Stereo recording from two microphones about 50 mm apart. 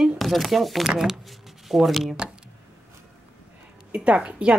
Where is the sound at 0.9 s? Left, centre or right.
Centre.